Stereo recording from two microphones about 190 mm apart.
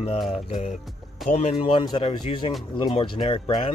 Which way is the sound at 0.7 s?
Centre (ahead or behind).